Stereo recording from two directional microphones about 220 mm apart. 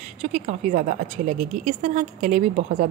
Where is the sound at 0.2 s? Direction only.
35° right (ahead or behind).